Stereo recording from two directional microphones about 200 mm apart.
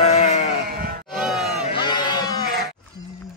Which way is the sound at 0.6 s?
50° right (ahead or behind).